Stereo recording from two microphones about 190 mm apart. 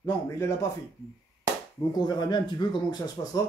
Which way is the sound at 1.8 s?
20° left (ahead or behind).